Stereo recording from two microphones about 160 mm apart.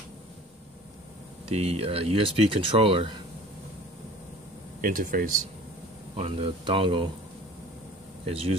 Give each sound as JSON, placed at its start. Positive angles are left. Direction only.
{"t": 1.5, "sound": "speech", "side_deg": -40}
{"t": 4.8, "sound": "speech", "side_deg": -60}
{"t": 6.1, "sound": "speech", "side_deg": -35}
{"t": 8.3, "sound": "speech", "side_deg": -35}